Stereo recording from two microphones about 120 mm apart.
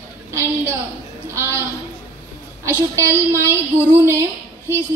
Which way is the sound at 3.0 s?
20° right (ahead or behind).